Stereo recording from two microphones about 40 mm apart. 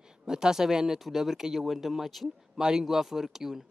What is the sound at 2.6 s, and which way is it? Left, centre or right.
Speech, centre.